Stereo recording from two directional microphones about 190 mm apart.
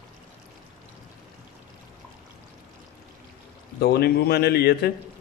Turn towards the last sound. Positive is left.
turn(degrees=55)  # may be behind; listen again after turning